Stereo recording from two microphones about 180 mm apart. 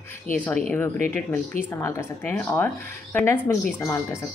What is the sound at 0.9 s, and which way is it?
Speech, 40° right (ahead or behind).